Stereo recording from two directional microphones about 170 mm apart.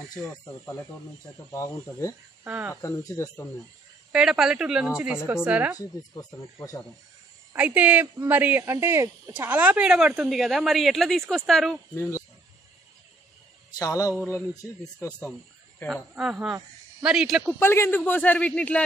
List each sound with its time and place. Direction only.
0.1 s a man's voice: 20° left (ahead or behind)
2.4 s speech: 10° right (ahead or behind)
2.7 s a man's voice: 15° left (ahead or behind)
4.1 s a woman's voice: 5° right (ahead or behind)
5.8 s speech: 20° left (ahead or behind)
7.5 s speech: 10° right (ahead or behind)
11.9 s a man's voice: 15° left (ahead or behind)
13.7 s speech: 20° left (ahead or behind)
15.9 s a woman's voice: 5° right (ahead or behind)
17.6 s a man's voice: 15° left (ahead or behind)